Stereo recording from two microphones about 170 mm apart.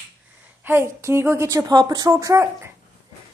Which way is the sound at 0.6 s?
15° right (ahead or behind).